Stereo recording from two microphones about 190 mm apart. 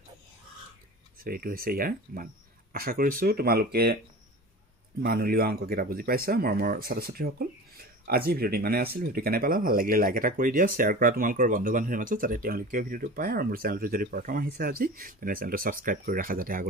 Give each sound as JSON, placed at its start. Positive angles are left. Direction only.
{"t": 1.2, "sound": "speech", "side_deg": -50}
{"t": 5.0, "sound": "speech", "side_deg": -55}